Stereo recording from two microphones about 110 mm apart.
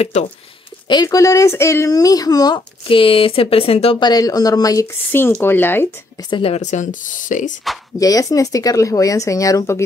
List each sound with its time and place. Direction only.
0.1 s speech: 90° left
0.8 s speech: 35° left (ahead or behind)
2.9 s speech: 50° left (ahead or behind)
4.0 s speech: 35° left (ahead or behind)
5.4 s speech: 20° left (ahead or behind)
6.3 s speech: 65° left (ahead or behind); by 6.9 s 90° left
7.7 s speech: centre (ahead or behind)
8.0 s speech: 30° left (ahead or behind)